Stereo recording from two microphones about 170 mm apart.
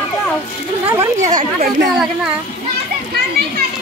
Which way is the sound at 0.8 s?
15° right (ahead or behind).